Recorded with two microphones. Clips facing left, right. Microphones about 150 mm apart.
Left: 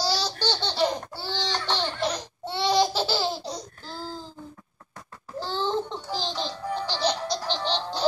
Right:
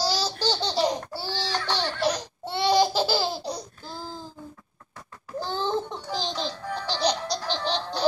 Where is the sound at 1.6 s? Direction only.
20° left (ahead or behind).